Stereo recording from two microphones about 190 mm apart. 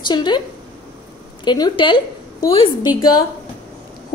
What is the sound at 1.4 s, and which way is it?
A woman's voice, 25° left (ahead or behind).